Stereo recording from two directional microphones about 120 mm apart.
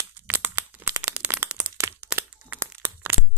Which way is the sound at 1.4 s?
10° right (ahead or behind).